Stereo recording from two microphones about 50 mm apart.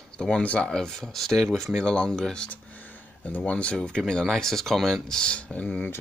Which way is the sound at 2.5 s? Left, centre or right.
Left.